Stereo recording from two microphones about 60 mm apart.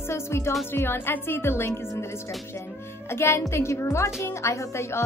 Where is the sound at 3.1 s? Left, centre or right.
Left.